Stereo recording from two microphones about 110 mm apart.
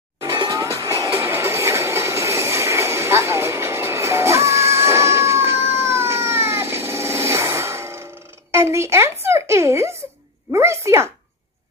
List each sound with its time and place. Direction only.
0.2 s music: 40° right (ahead or behind); by 8.0 s 25° right (ahead or behind)
8.5 s speech: 25° right (ahead or behind)